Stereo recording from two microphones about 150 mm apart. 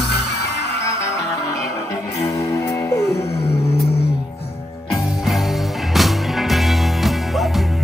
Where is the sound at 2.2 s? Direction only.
20° left (ahead or behind).